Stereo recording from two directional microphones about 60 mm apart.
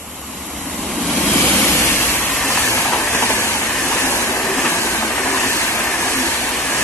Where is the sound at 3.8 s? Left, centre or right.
Left.